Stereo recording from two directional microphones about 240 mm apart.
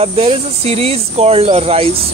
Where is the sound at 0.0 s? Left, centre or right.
Right.